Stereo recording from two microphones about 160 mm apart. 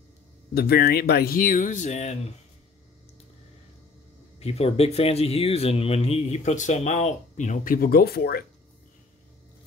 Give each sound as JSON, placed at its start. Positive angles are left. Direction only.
{"t": 0.6, "sound": "speech", "side_deg": 80}
{"t": 4.4, "sound": "speech", "side_deg": 40}